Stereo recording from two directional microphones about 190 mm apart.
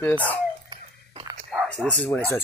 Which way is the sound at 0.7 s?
25° right (ahead or behind).